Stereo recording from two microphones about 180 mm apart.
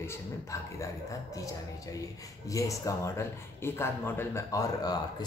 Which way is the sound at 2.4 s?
20° left (ahead or behind).